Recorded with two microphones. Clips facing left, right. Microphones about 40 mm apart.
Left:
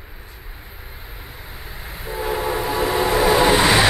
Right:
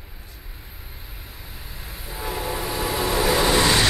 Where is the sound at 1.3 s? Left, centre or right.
Left.